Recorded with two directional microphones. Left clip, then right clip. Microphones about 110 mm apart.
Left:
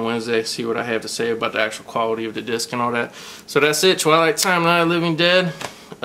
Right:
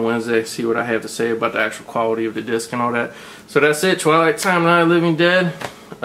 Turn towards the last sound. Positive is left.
turn(degrees=35)  # may be behind; listen again after turning